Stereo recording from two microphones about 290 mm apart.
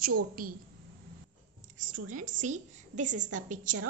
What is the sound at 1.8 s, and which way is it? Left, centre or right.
A woman's voice, right.